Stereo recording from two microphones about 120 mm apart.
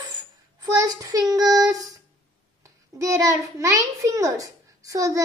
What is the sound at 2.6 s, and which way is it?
A child's voice, 30° right (ahead or behind).